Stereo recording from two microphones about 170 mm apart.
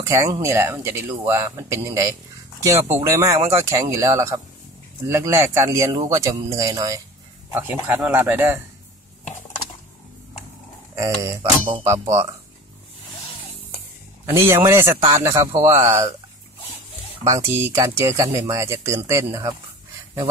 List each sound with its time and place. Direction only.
0.1 s speech: 20° right (ahead or behind)
11.0 s speech: 20° right (ahead or behind)
14.2 s a man's voice: 15° right (ahead or behind)
17.2 s speech: 15° right (ahead or behind)